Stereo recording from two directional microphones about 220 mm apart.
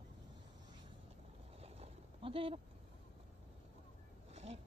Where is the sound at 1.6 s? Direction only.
30° right (ahead or behind).